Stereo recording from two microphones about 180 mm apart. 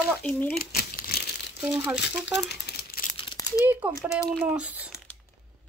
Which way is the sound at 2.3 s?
70° left (ahead or behind).